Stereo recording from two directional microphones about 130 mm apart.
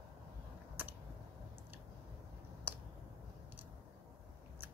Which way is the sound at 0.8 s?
15° right (ahead or behind).